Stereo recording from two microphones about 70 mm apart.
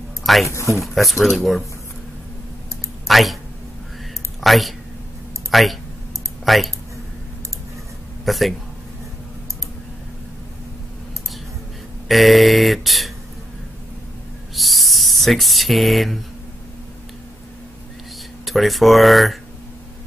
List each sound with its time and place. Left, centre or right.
0.2 s a sound: centre
0.5 s speech: left
0.7 s speech: centre
3.1 s a sound: centre
4.4 s speech: centre
8.3 s speech: centre
12.1 s speech: centre
14.5 s a sound: centre
18.4 s speech: centre